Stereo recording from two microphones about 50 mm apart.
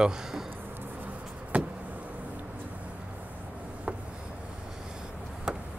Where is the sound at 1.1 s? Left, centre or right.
Right.